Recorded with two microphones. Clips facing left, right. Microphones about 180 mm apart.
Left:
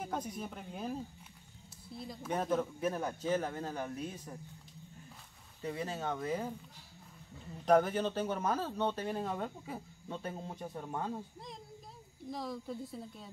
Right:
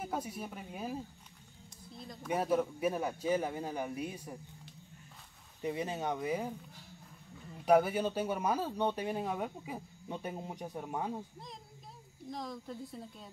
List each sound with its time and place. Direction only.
0.0 s speech: 5° right (ahead or behind)
2.2 s speech: 10° right (ahead or behind)
5.6 s speech: 20° right (ahead or behind)
7.6 s speech: 10° right (ahead or behind)
12.3 s speech: 5° left (ahead or behind)